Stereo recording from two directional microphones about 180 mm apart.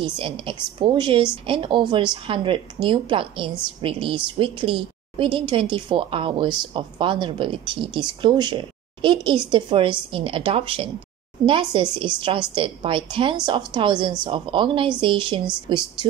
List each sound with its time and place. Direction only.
0.0 s a woman's voice: 30° right (ahead or behind)